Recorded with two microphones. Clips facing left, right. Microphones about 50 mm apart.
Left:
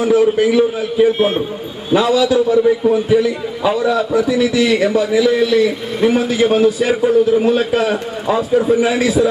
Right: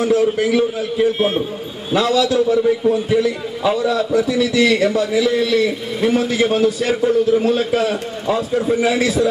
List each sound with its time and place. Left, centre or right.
0.0 s a man's voice: centre